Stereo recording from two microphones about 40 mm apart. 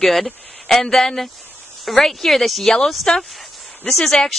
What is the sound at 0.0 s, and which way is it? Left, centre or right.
Speech, centre.